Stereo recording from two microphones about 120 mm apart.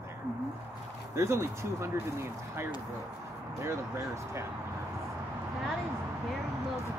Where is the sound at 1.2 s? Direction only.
20° right (ahead or behind).